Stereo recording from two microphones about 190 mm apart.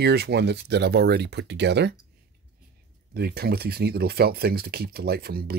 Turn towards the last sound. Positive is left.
turn(degrees=-55)  # may be behind; listen again after turning